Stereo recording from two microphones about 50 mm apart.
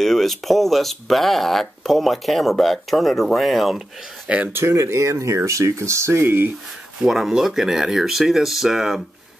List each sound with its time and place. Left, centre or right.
0.0 s speech: centre
4.5 s speech: right
6.2 s speech: right
7.1 s speech: centre